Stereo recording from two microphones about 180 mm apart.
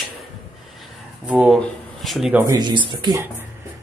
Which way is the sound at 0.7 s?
5° right (ahead or behind).